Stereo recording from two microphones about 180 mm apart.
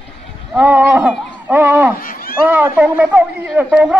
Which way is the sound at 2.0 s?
50° left (ahead or behind).